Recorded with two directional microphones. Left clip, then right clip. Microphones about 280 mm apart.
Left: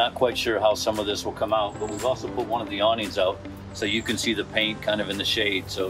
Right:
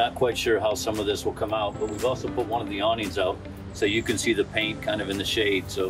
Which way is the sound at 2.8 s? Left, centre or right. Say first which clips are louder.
Left 3 dB; centre.